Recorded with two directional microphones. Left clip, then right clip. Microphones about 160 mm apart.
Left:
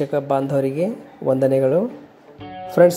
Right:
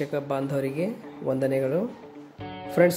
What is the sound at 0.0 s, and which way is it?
A man's voice, 15° left (ahead or behind).